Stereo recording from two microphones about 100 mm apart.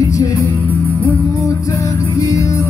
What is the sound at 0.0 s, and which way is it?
Music, 35° left (ahead or behind).